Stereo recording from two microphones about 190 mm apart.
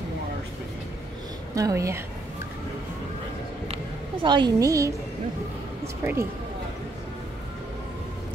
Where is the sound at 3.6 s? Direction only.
30° right (ahead or behind).